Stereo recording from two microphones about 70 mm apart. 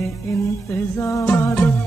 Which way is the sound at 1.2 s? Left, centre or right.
Left.